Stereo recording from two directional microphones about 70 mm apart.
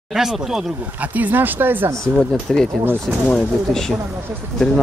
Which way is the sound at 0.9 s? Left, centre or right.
Right.